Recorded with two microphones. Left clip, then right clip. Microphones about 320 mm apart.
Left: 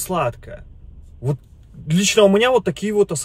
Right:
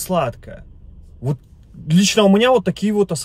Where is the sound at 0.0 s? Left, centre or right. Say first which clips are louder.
Right 1 dB; centre.